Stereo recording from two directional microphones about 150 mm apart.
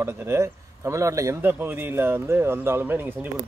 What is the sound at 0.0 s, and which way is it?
Speech, 20° right (ahead or behind).